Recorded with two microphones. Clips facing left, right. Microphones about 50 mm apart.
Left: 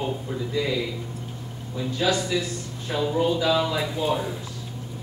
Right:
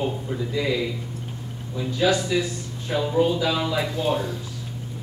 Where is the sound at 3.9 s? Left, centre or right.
Centre.